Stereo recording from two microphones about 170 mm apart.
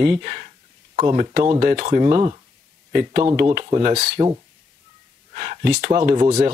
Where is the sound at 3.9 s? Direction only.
50° right (ahead or behind).